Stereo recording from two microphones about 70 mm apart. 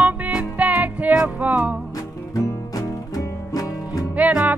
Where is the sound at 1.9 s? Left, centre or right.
Left.